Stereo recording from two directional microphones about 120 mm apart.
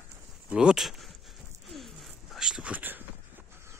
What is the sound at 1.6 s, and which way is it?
Whispering, centre (ahead or behind).